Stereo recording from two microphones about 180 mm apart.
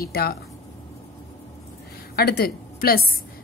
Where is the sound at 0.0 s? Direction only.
60° left (ahead or behind).